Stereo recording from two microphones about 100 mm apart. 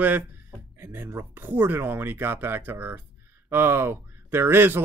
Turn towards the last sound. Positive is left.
turn(degrees=-20)  # may be behind; listen again after turning